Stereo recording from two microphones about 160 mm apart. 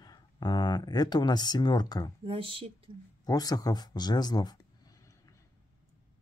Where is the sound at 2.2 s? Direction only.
35° right (ahead or behind).